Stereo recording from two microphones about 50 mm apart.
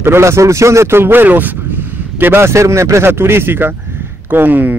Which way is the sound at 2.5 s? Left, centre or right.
Right.